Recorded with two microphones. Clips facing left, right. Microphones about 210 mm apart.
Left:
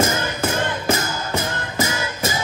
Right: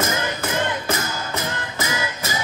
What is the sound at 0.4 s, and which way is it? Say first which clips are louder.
Music: left 2 dB; 30° left (ahead or behind).